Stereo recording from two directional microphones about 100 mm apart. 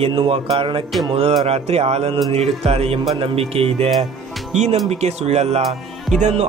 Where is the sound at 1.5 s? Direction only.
90° right.